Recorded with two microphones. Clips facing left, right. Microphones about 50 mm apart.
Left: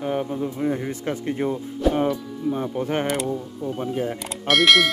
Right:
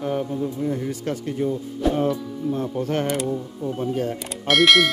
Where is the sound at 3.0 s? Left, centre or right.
Centre.